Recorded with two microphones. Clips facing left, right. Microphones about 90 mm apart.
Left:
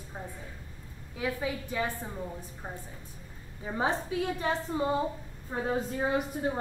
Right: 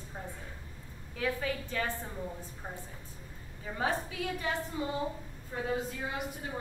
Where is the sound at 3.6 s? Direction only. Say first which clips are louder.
Left 3 dB; 25° left (ahead or behind).